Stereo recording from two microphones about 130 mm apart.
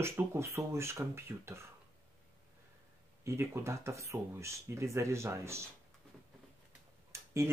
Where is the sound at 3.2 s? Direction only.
20° right (ahead or behind).